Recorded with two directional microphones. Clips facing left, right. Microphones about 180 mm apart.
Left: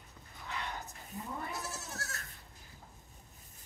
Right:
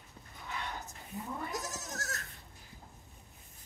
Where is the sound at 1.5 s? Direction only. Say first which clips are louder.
Right 2 dB; 40° right (ahead or behind).